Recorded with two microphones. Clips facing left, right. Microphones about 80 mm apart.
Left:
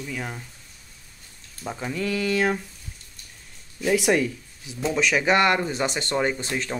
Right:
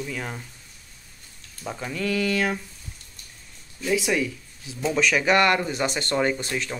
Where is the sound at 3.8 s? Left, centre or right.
Left.